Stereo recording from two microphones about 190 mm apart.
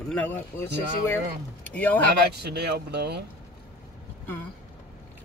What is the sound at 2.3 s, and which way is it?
Speech, 60° right (ahead or behind).